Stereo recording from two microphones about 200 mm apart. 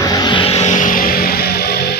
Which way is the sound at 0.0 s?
20° left (ahead or behind).